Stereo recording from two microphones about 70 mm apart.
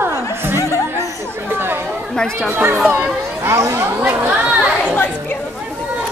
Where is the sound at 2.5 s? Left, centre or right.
Right.